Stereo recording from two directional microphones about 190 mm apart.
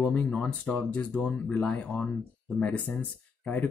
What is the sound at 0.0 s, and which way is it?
Speech, 10° left (ahead or behind).